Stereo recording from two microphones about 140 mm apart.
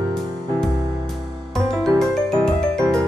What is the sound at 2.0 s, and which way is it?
Music, 5° left (ahead or behind).